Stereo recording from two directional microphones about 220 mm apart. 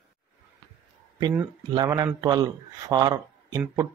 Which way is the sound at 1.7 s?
15° right (ahead or behind).